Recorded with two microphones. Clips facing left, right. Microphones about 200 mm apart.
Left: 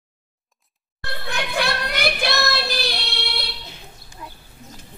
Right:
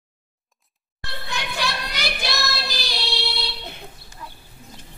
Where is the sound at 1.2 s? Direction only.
55° left (ahead or behind).